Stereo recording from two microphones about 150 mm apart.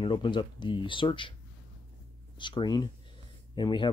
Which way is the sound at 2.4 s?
30° left (ahead or behind).